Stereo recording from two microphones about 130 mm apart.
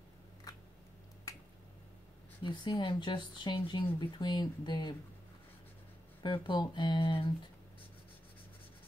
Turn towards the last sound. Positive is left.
turn(degrees=40)  # may be behind; listen again after turning